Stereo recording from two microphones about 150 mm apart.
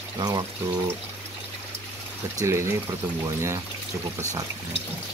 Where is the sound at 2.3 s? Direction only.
20° right (ahead or behind).